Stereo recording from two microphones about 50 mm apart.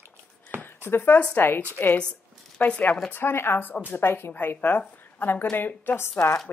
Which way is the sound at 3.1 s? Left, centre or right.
Left.